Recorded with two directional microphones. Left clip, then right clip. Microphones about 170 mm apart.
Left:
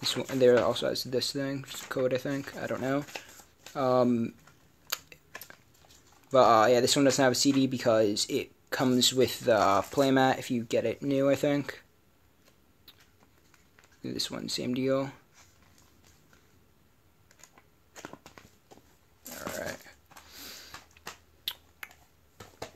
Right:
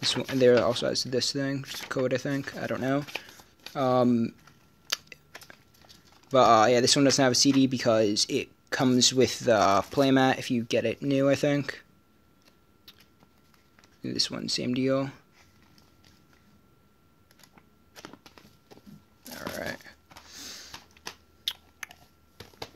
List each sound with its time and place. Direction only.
0.1 s speech: 35° right (ahead or behind)
4.8 s typing: 40° right (ahead or behind)
6.3 s speech: 45° right (ahead or behind)
14.0 s speech: 35° right (ahead or behind)
19.3 s a sound: 45° right (ahead or behind)